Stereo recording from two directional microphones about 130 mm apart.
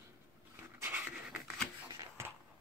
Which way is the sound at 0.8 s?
15° right (ahead or behind).